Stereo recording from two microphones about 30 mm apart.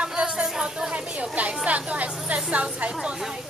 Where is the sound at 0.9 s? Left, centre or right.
Right.